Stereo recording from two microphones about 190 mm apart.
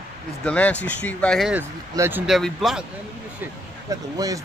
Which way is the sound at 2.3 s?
Centre (ahead or behind).